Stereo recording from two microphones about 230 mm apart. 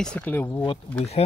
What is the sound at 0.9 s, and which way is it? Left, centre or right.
Speech, left.